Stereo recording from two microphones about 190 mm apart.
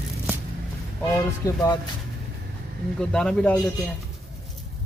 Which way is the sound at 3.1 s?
5° left (ahead or behind).